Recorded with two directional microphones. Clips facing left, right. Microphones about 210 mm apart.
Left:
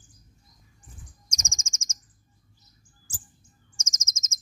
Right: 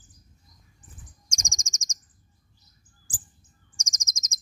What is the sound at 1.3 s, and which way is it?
Chirp, 15° right (ahead or behind).